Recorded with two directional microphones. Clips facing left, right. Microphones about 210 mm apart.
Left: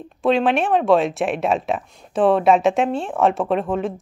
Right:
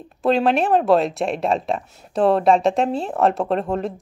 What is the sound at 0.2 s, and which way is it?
Speech, centre (ahead or behind).